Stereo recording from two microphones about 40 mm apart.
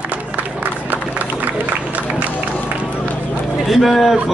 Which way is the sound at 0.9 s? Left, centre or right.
Right.